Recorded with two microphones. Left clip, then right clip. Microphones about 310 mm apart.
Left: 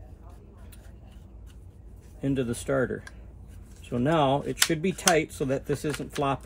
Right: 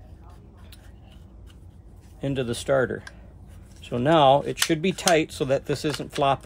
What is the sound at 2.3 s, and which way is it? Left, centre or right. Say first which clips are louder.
Speech: right 5 dB; centre.